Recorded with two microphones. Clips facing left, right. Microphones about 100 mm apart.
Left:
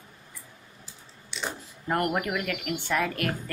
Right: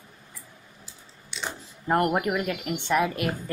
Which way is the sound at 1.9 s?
25° right (ahead or behind).